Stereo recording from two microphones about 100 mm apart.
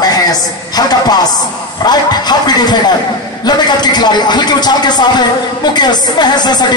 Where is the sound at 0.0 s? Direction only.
40° left (ahead or behind).